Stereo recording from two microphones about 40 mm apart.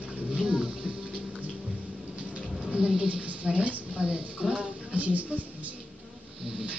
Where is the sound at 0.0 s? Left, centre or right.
Right.